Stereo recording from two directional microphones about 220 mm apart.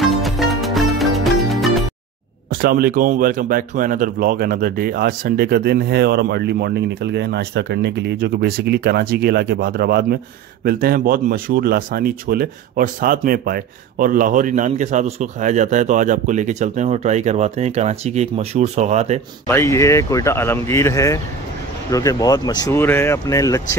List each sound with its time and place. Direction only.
0.0 s music: centre (ahead or behind)
2.5 s speech: 40° right (ahead or behind)
19.4 s speech: 10° left (ahead or behind)